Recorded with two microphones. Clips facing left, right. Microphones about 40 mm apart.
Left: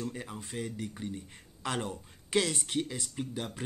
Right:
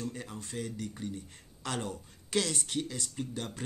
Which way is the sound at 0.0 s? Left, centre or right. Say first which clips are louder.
Left 1 dB; centre.